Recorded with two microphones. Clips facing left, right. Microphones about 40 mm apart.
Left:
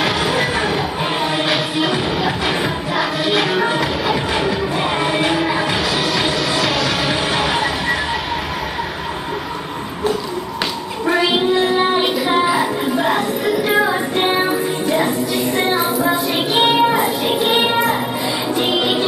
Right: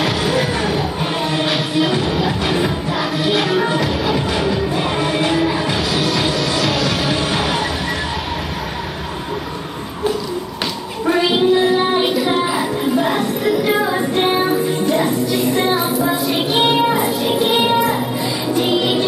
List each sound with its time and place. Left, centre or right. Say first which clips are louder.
0.0 s music: even; centre
11.1 s child singing: even; centre
11.5 s music: right 1 dB; centre